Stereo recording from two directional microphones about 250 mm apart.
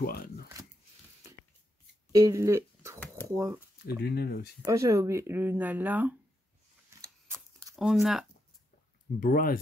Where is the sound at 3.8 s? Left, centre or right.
Left.